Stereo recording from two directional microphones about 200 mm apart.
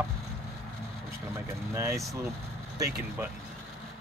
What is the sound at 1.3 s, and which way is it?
Speech, 15° right (ahead or behind).